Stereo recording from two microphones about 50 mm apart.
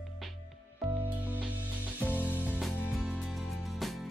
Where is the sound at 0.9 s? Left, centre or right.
Right.